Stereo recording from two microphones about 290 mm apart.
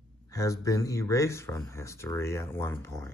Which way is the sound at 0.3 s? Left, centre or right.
Centre.